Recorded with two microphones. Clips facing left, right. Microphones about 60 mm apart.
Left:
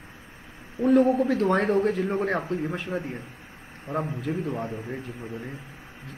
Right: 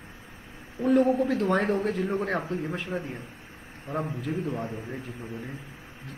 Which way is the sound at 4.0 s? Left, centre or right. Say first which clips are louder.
Even; left.